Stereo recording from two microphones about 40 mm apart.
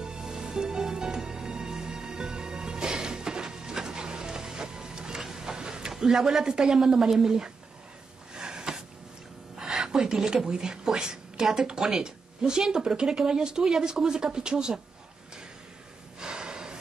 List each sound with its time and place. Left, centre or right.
0.0 s music: centre
5.2 s a sound: centre
6.4 s a woman's voice: centre
8.4 s a sound: centre
10.4 s a woman's voice: centre
16.2 s snort: centre